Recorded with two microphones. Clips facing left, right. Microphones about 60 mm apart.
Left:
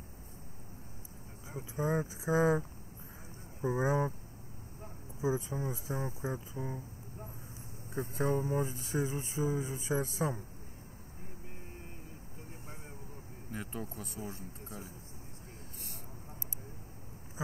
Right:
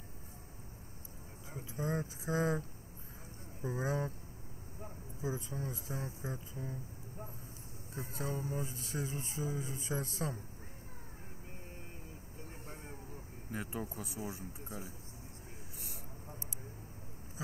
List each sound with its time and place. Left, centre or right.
1.6 s speech: centre
3.6 s speech: left
5.2 s speech: centre
6.6 s speech: left
7.9 s speech: left
13.5 s speech: centre